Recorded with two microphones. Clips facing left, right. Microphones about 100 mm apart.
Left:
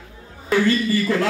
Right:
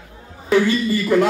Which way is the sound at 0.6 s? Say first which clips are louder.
Right 1 dB; 20° right (ahead or behind).